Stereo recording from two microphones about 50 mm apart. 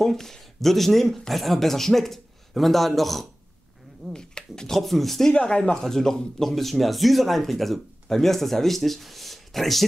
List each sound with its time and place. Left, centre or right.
0.0 s speech: centre
4.1 s speech: centre
4.7 s speech: centre
5.3 s speech: centre
5.8 s speech: centre